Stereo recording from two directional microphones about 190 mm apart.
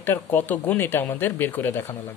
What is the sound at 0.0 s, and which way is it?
Speech, 10° left (ahead or behind).